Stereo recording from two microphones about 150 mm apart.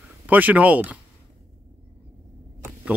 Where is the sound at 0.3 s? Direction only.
10° right (ahead or behind).